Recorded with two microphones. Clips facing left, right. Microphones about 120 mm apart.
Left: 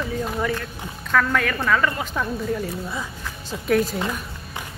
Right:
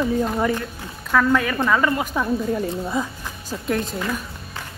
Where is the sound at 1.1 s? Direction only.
10° right (ahead or behind).